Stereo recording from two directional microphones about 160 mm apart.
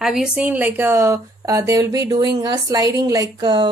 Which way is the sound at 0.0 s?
5° right (ahead or behind).